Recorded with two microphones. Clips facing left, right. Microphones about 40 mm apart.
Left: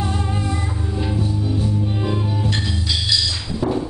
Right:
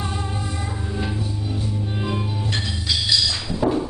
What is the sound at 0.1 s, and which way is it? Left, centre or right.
Music, left.